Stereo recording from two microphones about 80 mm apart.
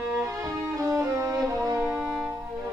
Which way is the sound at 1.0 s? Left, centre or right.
Right.